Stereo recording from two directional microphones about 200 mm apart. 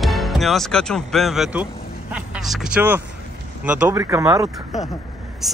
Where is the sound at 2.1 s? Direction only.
Centre (ahead or behind).